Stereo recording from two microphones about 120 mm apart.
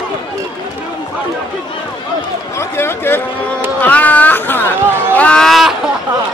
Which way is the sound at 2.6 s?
20° left (ahead or behind).